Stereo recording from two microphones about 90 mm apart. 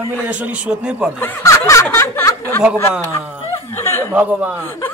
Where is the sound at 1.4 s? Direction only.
30° left (ahead or behind).